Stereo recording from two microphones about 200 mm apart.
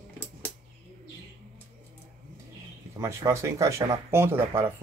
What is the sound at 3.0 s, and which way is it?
Speech, 15° right (ahead or behind).